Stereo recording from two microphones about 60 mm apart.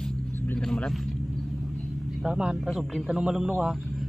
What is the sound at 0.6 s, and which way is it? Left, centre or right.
Vehicle, centre.